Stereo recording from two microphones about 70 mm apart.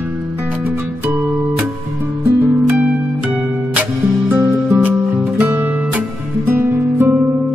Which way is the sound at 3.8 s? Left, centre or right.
Right.